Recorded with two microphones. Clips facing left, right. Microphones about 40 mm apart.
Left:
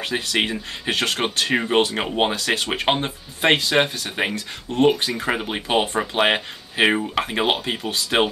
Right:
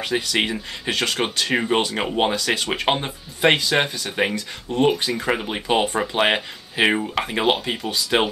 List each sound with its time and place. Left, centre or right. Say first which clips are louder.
0.0 s speech: right 1 dB; centre
0.8 s speech: even; centre
1.5 s speech: right 1 dB; centre
2.3 s speech: even; centre
2.8 s speech: even; centre